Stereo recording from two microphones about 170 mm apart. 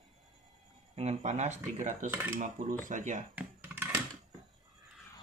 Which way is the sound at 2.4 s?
50° right (ahead or behind).